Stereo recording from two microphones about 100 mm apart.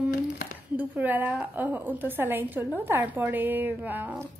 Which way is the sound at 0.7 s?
15° right (ahead or behind).